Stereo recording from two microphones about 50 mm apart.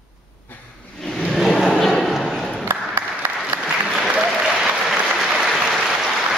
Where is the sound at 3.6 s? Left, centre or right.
Centre.